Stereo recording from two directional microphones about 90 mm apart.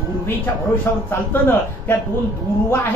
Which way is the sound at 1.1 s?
25° left (ahead or behind).